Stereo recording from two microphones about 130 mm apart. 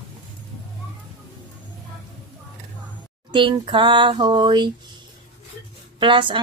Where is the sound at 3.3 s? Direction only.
40° right (ahead or behind).